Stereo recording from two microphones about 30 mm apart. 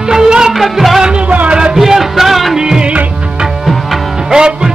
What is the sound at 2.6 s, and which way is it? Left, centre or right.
Music, right.